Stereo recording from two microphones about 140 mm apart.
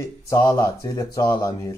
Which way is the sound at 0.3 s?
20° left (ahead or behind).